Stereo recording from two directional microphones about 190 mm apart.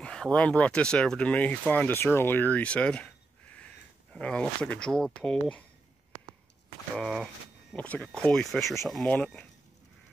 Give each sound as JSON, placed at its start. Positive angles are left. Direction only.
{"t": 0.0, "sound": "speech", "side_deg": 5}
{"t": 7.0, "sound": "speech", "side_deg": 0}